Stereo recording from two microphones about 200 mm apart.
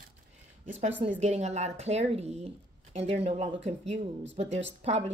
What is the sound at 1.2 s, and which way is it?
A woman's voice, 35° right (ahead or behind).